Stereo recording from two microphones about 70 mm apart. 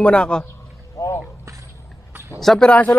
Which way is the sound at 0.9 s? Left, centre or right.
Left.